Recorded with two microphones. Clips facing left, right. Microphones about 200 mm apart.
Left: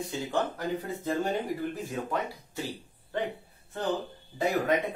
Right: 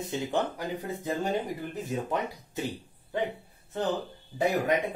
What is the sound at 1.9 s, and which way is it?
Speech, 20° right (ahead or behind).